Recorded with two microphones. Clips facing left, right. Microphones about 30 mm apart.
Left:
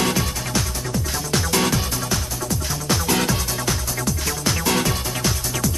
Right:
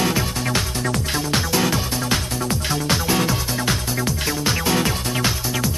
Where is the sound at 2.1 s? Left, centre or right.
Right.